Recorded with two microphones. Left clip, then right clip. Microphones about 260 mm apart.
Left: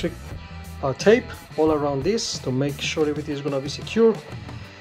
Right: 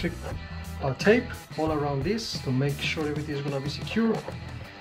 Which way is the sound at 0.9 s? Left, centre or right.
Left.